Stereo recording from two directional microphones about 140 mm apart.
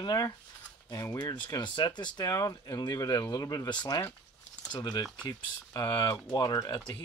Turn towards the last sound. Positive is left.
turn(degrees=35)  # may be behind; listen again after turning